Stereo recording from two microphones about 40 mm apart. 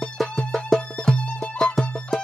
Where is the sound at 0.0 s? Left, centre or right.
Centre.